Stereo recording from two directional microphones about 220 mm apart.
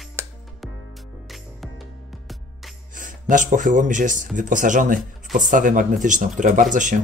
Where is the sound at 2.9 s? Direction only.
35° right (ahead or behind).